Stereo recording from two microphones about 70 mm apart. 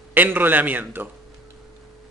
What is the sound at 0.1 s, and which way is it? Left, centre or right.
A man's voice, right.